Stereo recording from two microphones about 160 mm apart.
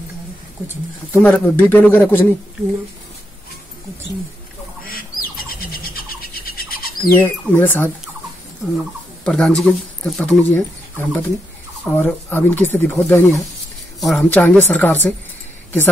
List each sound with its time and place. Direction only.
1.1 s speech: 10° left (ahead or behind)
4.8 s bird: 65° left (ahead or behind)
7.2 s speech: 15° left (ahead or behind)
13.9 s speech: centre (ahead or behind)